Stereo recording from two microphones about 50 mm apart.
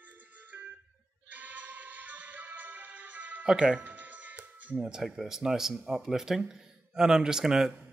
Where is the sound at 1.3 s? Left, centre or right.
Right.